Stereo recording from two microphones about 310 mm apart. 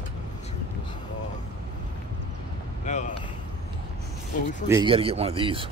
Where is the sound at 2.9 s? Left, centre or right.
Left.